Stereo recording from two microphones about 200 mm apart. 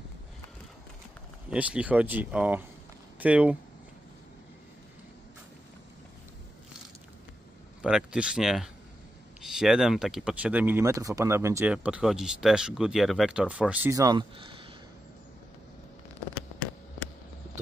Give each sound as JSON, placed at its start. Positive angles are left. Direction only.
{"t": 1.5, "sound": "speech", "side_deg": -5}
{"t": 7.8, "sound": "speech", "side_deg": -5}
{"t": 13.9, "sound": "speech", "side_deg": -20}
{"t": 16.3, "sound": "fireworks", "side_deg": 5}